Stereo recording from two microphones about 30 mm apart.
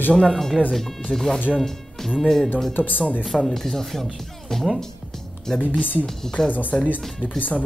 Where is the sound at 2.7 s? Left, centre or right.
Left.